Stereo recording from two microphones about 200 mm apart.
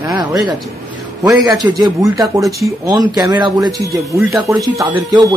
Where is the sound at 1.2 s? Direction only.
20° right (ahead or behind).